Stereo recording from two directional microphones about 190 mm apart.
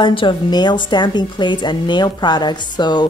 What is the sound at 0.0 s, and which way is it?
A woman's voice, 25° left (ahead or behind).